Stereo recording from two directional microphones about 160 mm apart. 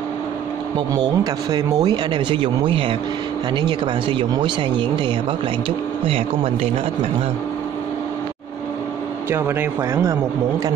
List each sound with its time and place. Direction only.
0.9 s speech: 25° right (ahead or behind)
9.3 s speech: 15° right (ahead or behind)